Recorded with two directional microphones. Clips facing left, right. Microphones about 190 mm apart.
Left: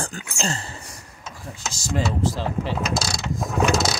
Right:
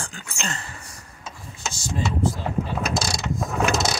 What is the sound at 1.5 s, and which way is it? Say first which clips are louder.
Speech: left 3 dB; 90° left.